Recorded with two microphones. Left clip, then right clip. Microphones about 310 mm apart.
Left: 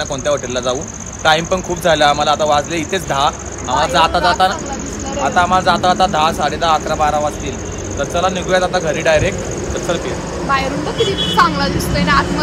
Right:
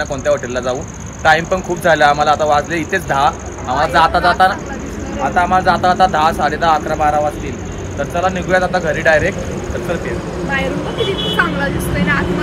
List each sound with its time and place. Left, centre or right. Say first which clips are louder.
0.1 s a man's voice: right 1 dB; centre
11.3 s speech: left 5 dB; centre